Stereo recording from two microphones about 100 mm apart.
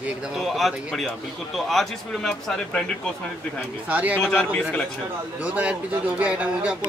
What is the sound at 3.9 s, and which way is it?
Speech, 15° right (ahead or behind).